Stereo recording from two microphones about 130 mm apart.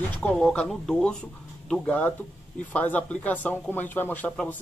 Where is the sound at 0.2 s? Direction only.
5° left (ahead or behind).